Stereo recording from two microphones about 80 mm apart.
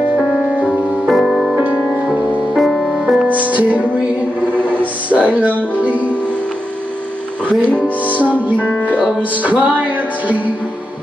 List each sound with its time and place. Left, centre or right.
0.7 s music: centre
1.5 s music: centre
3.3 s music: centre
5.1 s music: centre
8.1 s music: centre